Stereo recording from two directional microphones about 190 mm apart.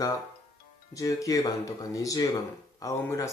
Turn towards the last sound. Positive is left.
turn(degrees=15)  # may be behind; listen again after turning